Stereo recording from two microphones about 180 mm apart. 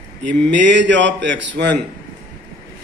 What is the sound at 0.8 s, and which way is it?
Speech, 85° right.